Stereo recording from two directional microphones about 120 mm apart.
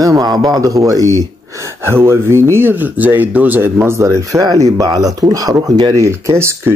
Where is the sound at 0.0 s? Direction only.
35° right (ahead or behind).